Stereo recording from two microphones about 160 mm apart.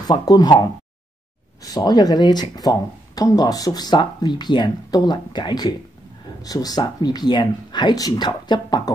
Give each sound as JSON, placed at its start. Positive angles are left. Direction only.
{"t": 0.1, "sound": "speech", "side_deg": 25}